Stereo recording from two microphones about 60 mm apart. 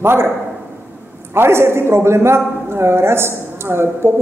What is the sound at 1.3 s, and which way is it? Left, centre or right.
A man's voice, right.